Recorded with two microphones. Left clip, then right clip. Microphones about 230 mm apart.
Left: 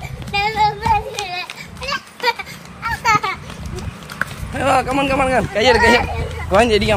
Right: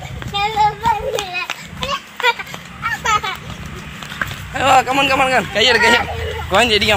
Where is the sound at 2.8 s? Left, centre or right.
Centre.